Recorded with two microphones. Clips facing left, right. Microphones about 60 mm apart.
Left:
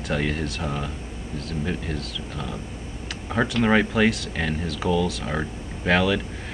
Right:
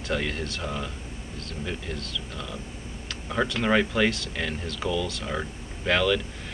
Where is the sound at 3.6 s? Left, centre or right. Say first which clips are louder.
Left 3 dB; centre.